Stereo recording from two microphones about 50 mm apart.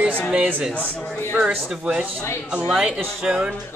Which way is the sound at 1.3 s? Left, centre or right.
Right.